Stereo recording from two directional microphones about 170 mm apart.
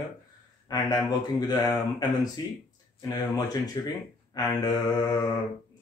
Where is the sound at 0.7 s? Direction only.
20° left (ahead or behind).